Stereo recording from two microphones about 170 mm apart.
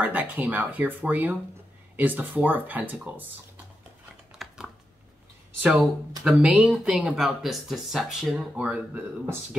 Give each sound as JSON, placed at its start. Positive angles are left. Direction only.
{"t": 0.0, "sound": "speech", "side_deg": -10}
{"t": 4.4, "sound": "typing", "side_deg": 0}
{"t": 5.6, "sound": "speech", "side_deg": -5}